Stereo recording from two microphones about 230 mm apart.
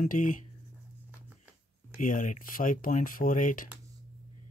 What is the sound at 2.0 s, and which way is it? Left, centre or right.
Speech, left.